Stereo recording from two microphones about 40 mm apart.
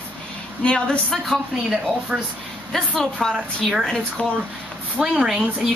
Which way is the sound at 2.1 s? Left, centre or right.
Right.